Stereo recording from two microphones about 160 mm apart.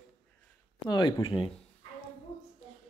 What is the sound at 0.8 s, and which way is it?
Speech, 25° left (ahead or behind).